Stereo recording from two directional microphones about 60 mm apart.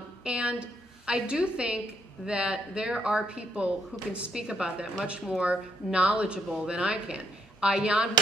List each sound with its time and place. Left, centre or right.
0.2 s a woman's voice: centre